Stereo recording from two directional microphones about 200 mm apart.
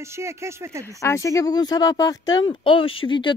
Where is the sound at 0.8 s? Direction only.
15° left (ahead or behind).